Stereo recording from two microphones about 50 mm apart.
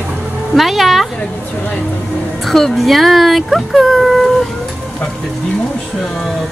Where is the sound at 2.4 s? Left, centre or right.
Centre.